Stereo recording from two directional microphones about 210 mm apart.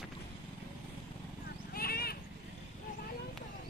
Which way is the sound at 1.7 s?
45° left (ahead or behind).